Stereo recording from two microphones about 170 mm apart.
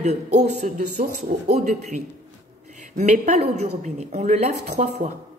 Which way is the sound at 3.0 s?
45° right (ahead or behind).